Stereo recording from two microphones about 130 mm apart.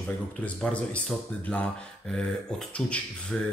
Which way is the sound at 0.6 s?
5° left (ahead or behind).